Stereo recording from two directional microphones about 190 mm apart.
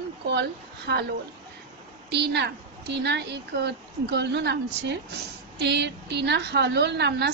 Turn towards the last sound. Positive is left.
turn(degrees=-60)  # may be behind; listen again after turning